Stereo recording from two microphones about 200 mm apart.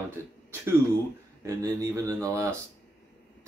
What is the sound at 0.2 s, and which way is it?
Speech, 10° right (ahead or behind).